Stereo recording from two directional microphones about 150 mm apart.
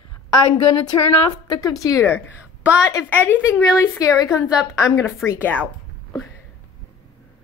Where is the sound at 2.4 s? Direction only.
10° right (ahead or behind).